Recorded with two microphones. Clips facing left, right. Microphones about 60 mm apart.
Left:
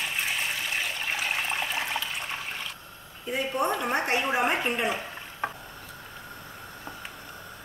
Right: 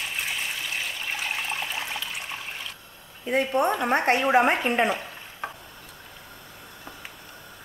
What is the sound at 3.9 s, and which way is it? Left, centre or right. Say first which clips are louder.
A woman's voice: right 5 dB; right.